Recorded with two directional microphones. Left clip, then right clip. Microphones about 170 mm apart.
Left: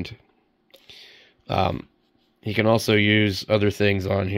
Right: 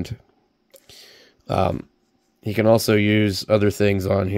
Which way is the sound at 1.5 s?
25° right (ahead or behind).